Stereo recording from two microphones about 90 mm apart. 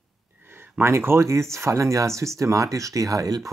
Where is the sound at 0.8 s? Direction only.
25° right (ahead or behind).